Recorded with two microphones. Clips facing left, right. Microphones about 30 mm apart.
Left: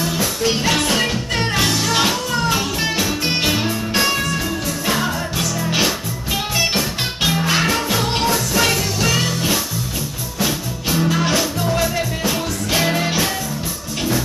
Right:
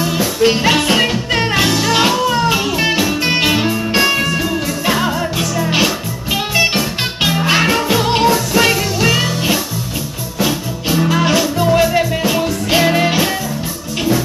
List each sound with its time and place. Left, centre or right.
0.0 s music: centre
0.4 s music: right